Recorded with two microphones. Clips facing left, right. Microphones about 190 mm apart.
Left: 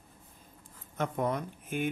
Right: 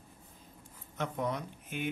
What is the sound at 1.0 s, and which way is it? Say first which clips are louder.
Speech: left 3 dB; 50° left (ahead or behind).